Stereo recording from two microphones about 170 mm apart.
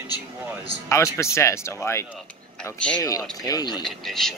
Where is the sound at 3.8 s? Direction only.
Centre (ahead or behind).